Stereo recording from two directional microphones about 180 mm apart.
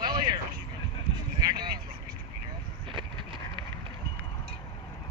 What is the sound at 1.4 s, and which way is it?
Speech, 25° right (ahead or behind).